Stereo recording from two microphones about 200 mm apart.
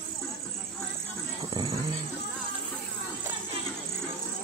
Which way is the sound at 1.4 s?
15° right (ahead or behind).